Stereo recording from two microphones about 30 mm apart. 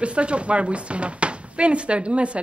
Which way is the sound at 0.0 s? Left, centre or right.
Right.